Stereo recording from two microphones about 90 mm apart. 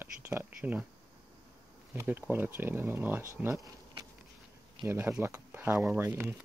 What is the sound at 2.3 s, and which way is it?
Speech, 20° right (ahead or behind).